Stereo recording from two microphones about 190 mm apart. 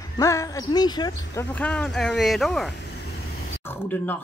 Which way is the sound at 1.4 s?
5° left (ahead or behind).